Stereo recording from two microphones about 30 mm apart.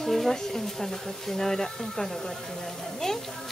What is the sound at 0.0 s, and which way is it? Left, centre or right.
Speech, centre.